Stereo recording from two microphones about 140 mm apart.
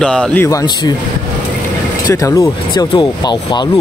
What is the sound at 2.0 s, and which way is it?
Speech, 25° left (ahead or behind).